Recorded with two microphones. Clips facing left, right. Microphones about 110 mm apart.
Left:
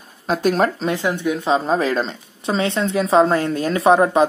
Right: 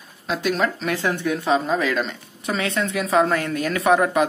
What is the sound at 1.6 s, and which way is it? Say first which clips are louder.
Speech: left 3 dB; 35° left (ahead or behind).